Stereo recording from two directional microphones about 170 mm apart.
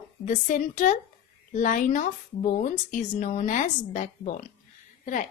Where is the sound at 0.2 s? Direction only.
50° left (ahead or behind).